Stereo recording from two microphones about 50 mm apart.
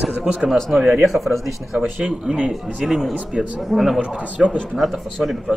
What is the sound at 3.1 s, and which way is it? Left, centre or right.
Speech, right.